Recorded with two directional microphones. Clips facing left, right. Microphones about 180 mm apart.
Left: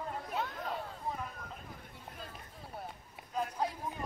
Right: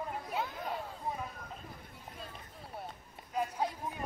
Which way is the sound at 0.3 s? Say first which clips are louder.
Even; 5° right (ahead or behind).